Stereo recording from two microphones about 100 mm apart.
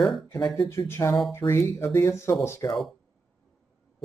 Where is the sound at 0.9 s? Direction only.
30° left (ahead or behind).